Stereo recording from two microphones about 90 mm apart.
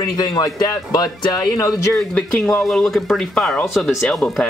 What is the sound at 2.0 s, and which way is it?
Speech, 5° left (ahead or behind).